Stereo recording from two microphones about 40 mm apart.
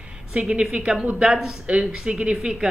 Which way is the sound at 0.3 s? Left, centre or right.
Right.